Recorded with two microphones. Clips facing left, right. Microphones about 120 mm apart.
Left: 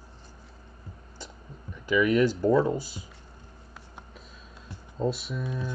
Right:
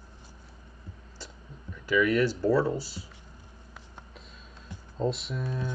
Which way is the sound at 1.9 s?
15° left (ahead or behind).